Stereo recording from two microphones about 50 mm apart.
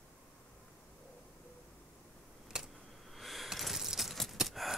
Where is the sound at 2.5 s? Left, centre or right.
Centre.